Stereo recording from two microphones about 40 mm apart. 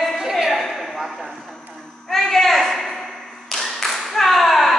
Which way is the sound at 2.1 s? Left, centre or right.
Centre.